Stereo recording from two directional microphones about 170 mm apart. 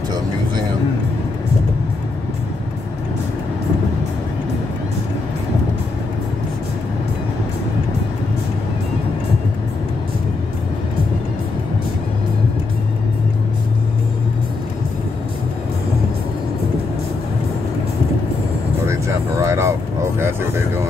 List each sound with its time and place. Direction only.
18.9 s vehicle: 15° right (ahead or behind)